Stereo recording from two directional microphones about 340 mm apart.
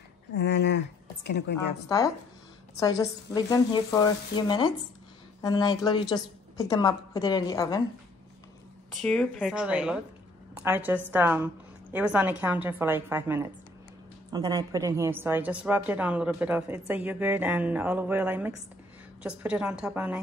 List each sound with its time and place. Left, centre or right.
0.3 s a sound: left
1.9 s a woman's voice: centre
8.9 s a woman's voice: centre